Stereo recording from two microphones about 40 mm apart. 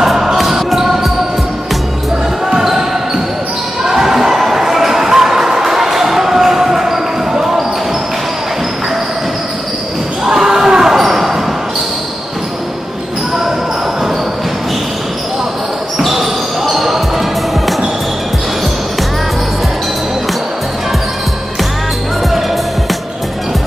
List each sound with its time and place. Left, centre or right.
0.0 s music: centre
2.5 s basketball bounce: centre
3.8 s a sound: centre
10.2 s basketball bounce: centre
16.0 s basketball bounce: centre